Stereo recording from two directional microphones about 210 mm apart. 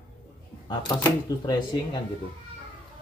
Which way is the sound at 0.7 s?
20° left (ahead or behind).